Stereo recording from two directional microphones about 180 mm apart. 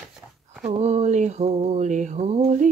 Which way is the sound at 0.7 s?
35° right (ahead or behind).